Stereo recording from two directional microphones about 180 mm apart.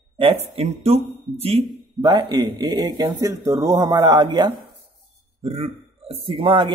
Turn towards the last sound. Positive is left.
turn(degrees=-30)  # may be behind; listen again after turning